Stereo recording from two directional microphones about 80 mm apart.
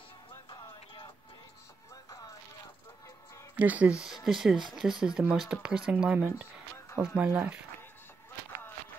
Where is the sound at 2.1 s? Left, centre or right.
Left.